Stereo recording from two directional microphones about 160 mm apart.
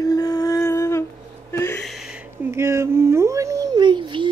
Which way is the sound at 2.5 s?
15° right (ahead or behind).